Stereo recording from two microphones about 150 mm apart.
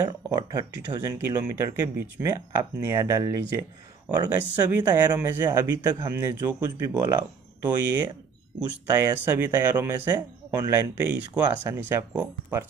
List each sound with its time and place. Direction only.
0.0 s speech: 25° right (ahead or behind)
8.8 s speech: 20° right (ahead or behind)